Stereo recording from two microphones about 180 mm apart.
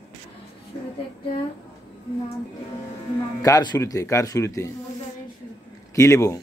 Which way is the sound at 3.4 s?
20° left (ahead or behind).